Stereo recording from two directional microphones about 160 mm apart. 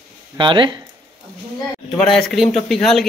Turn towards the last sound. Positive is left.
turn(degrees=0)  # may be behind; listen again after turning